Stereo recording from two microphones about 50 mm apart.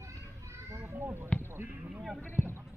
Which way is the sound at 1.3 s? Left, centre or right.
Left.